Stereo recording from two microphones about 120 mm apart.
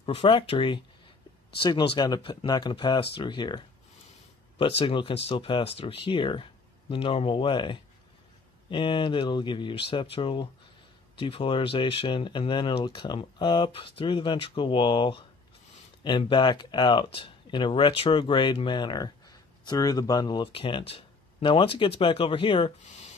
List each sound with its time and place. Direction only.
0.0 s speech: 50° left (ahead or behind)
4.6 s speech: 50° left (ahead or behind); by 20.4 s 35° left (ahead or behind)
20.5 s speech: 50° left (ahead or behind)